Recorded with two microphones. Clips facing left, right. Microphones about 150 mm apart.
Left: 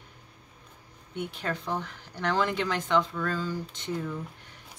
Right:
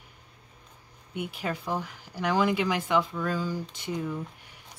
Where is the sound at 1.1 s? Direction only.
10° right (ahead or behind).